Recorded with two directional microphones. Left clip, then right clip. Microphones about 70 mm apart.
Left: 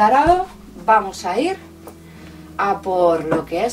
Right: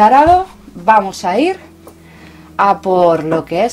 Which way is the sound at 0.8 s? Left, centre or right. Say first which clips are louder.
Right 5 dB; right.